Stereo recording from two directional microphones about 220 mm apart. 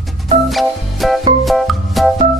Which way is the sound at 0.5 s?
Centre (ahead or behind).